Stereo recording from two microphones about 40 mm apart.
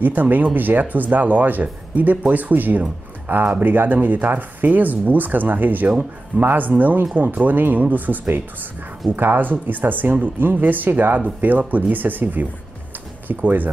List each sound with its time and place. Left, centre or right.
0.0 s speech: right
3.3 s speech: right